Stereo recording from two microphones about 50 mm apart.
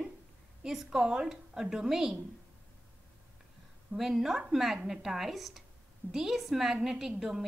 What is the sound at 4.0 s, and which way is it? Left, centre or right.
A woman's voice, centre.